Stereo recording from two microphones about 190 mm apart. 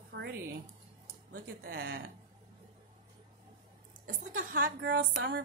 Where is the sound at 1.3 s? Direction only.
50° right (ahead or behind).